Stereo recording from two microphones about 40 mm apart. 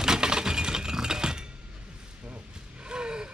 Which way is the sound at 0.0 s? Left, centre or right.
Centre.